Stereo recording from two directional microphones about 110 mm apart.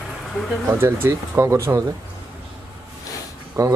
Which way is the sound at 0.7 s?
25° right (ahead or behind).